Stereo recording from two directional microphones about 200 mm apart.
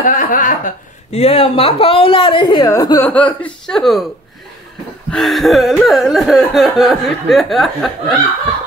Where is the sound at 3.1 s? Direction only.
5° left (ahead or behind).